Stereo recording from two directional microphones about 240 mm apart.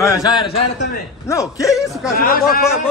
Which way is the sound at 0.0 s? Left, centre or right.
Centre.